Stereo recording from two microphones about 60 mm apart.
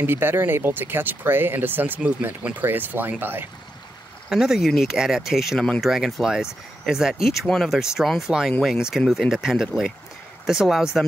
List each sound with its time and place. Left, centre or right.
0.0 s speech: right
4.3 s speech: centre
7.4 s speech: centre
7.7 s speech: centre